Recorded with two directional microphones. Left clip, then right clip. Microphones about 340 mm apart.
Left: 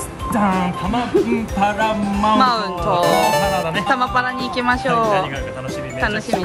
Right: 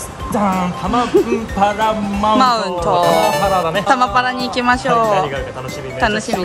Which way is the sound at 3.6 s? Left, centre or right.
Centre.